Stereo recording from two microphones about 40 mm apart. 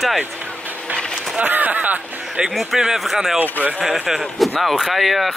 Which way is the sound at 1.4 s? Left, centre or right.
Right.